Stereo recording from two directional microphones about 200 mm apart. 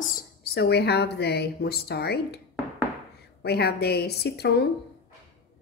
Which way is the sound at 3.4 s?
55° left (ahead or behind).